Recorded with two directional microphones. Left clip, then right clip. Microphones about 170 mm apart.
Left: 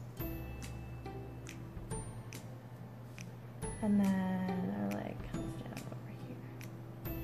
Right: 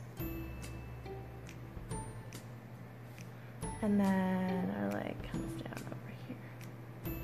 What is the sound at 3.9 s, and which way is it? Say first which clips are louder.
Music: right 3 dB; 30° right (ahead or behind).